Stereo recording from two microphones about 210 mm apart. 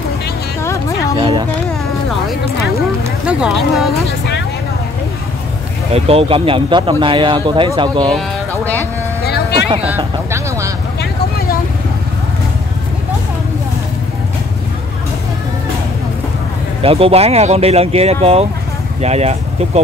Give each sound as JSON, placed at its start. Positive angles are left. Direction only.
{"t": 0.6, "sound": "music", "side_deg": 15}
{"t": 3.3, "sound": "speech", "side_deg": -5}
{"t": 5.9, "sound": "speech", "side_deg": -25}
{"t": 9.2, "sound": "vehicle", "side_deg": 50}
{"t": 9.8, "sound": "vehicle", "side_deg": -10}
{"t": 16.8, "sound": "speech", "side_deg": -25}